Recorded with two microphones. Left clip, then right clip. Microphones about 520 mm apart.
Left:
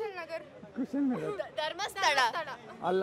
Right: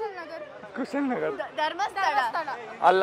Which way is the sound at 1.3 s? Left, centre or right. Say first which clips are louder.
Right 6 dB; left.